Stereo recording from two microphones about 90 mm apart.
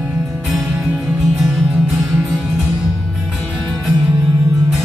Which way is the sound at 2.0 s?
20° right (ahead or behind).